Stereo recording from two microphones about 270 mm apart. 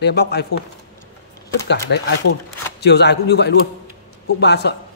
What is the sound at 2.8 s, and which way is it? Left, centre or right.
A man's voice, left.